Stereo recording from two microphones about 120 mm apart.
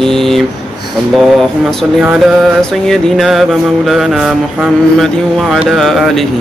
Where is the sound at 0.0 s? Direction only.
5° left (ahead or behind).